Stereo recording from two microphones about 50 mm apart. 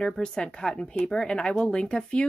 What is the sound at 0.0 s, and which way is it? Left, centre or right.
Speech, centre.